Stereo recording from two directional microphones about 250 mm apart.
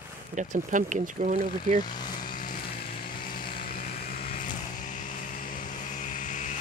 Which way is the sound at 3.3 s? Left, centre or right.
Left.